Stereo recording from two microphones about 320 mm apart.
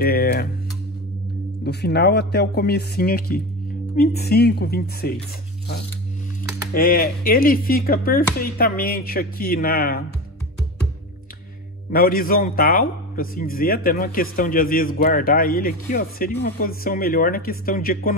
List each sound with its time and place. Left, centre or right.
0.0 s a man's voice: left
1.6 s a man's voice: left
6.7 s a man's voice: left
11.9 s a man's voice: left